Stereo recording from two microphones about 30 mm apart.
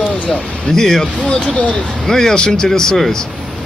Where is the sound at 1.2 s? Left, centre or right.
Left.